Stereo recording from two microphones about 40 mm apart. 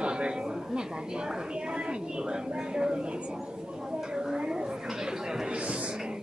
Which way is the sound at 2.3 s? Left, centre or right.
Right.